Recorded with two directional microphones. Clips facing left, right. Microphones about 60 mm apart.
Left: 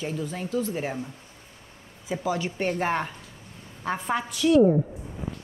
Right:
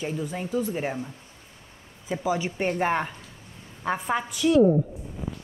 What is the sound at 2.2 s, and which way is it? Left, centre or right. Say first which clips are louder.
A woman's voice: right 1 dB; centre.